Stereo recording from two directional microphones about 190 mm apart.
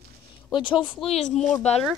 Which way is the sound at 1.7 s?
35° left (ahead or behind).